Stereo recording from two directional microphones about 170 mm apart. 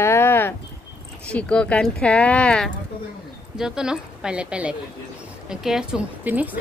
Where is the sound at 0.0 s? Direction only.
15° left (ahead or behind).